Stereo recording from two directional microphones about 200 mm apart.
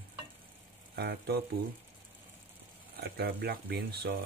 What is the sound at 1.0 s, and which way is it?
Speech, 55° right (ahead or behind).